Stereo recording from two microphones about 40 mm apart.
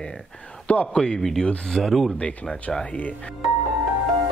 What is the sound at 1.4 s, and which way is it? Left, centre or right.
Speech, left.